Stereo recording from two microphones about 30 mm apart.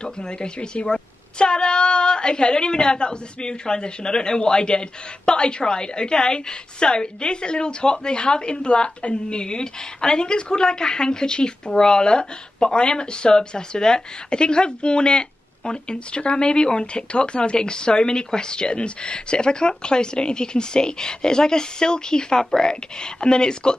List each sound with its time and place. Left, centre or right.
0.0 s a woman's voice: left